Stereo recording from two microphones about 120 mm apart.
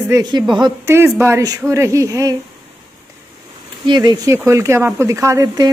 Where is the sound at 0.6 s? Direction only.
25° right (ahead or behind).